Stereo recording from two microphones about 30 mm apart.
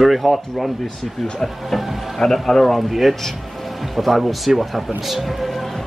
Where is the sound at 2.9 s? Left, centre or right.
Centre.